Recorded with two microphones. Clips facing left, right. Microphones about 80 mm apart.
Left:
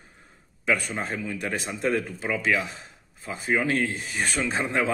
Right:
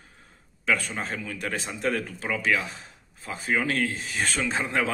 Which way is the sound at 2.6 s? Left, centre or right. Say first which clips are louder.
Left 2 dB; left.